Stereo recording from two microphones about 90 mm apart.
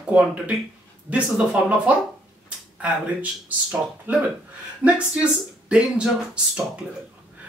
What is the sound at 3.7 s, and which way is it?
Speech, 10° right (ahead or behind).